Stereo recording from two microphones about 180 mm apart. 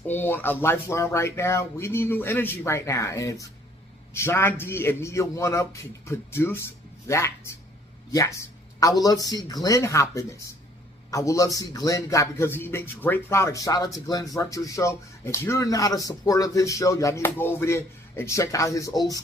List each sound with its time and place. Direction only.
0.1 s speech: 10° left (ahead or behind)